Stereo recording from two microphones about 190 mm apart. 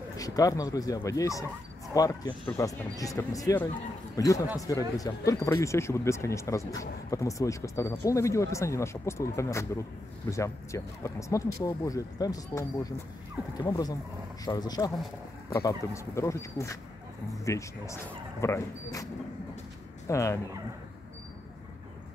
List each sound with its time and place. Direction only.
0.2 s speech: 20° left (ahead or behind)
20.1 s speech: 15° left (ahead or behind)